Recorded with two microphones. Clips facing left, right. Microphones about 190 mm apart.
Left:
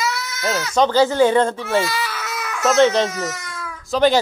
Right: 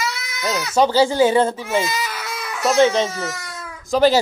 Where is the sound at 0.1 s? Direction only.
15° right (ahead or behind).